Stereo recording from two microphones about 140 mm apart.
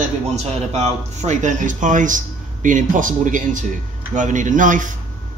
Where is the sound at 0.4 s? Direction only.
50° right (ahead or behind).